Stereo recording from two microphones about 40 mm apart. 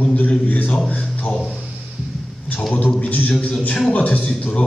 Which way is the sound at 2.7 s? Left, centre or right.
Left.